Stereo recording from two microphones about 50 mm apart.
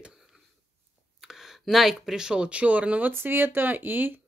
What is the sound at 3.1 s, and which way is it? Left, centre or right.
Speech, right.